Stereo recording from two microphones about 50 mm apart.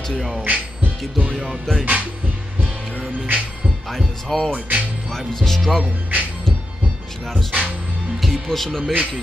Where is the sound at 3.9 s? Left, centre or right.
Centre.